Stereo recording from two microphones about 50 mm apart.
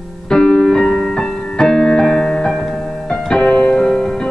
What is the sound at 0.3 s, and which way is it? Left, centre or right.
Music, centre.